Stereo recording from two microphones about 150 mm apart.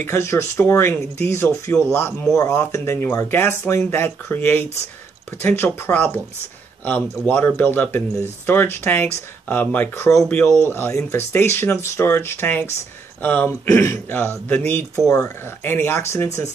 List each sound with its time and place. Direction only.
0.0 s speech: 15° left (ahead or behind)